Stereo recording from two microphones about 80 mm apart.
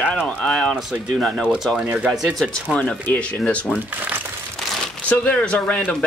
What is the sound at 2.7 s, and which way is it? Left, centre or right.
Speech, centre.